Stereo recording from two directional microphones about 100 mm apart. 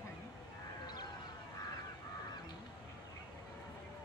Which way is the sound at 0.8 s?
40° left (ahead or behind).